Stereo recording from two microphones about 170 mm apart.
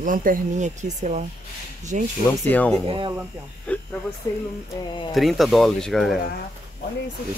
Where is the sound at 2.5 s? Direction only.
10° left (ahead or behind).